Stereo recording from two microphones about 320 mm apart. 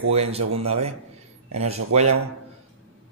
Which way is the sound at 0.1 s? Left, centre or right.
Centre.